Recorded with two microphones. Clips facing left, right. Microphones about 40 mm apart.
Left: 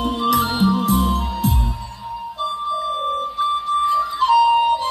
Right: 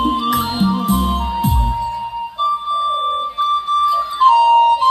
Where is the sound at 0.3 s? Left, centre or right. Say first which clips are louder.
Even; centre.